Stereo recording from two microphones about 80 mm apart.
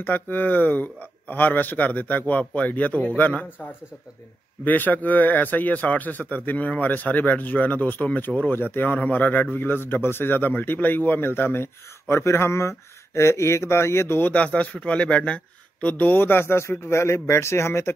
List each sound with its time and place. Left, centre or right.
0.0 s speech: left